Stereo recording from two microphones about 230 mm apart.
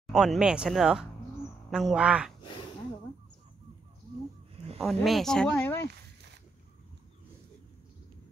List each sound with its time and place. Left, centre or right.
0.1 s speech: centre
2.4 s a sound: centre
4.7 s speech: centre